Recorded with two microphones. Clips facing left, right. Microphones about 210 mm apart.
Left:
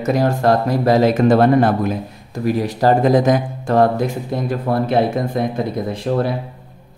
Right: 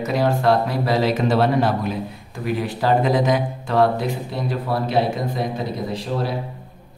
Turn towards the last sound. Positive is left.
turn(degrees=55)  # may be behind; listen again after turning